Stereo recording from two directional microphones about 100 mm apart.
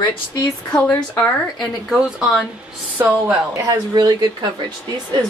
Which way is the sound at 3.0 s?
20° right (ahead or behind).